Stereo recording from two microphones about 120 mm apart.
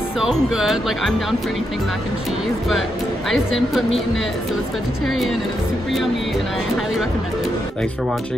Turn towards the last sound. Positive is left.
turn(degrees=0)  # may be behind; listen again after turning